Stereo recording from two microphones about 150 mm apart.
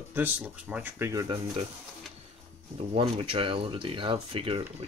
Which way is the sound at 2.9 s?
40° right (ahead or behind).